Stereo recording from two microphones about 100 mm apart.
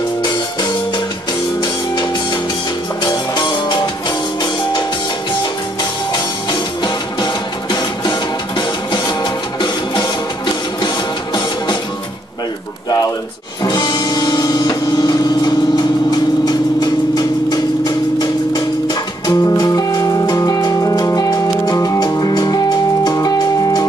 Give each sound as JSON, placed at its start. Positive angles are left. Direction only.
{"t": 0.2, "sound": "music", "side_deg": 45}
{"t": 3.1, "sound": "music", "side_deg": 45}
{"t": 7.7, "sound": "music", "side_deg": 50}
{"t": 13.6, "sound": "music", "side_deg": 45}